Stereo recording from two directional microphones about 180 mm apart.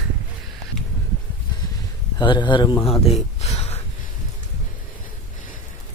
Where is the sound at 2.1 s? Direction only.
25° left (ahead or behind).